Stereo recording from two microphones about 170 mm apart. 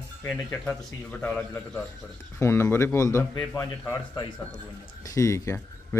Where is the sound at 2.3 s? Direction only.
15° left (ahead or behind).